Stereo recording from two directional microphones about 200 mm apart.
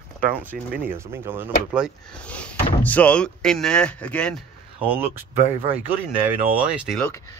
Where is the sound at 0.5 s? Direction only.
50° right (ahead or behind).